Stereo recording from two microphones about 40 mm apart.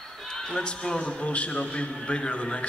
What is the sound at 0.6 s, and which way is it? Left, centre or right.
A man's voice, left.